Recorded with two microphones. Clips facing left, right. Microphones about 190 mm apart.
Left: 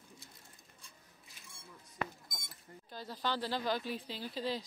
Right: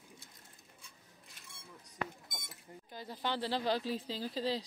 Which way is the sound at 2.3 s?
Centre (ahead or behind).